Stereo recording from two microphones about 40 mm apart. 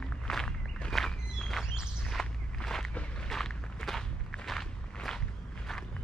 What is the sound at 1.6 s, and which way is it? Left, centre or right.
Walk, centre.